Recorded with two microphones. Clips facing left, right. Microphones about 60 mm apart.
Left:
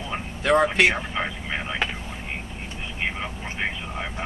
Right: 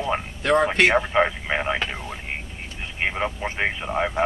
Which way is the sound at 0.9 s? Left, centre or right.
Right.